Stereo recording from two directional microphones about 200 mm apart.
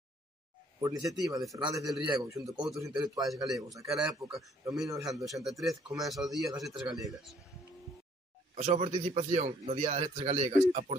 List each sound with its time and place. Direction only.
0.7 s a man's voice: 15° right (ahead or behind)
5.2 s a man's voice: centre (ahead or behind)
8.5 s a man's voice: 30° right (ahead or behind)